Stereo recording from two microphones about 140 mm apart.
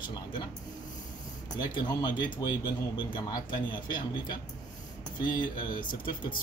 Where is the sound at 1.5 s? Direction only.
30° left (ahead or behind).